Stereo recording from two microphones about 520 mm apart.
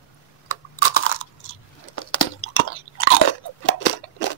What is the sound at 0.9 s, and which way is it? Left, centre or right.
Chewing, left.